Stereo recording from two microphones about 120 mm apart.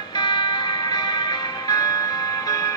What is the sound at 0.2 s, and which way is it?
Music, 35° left (ahead or behind).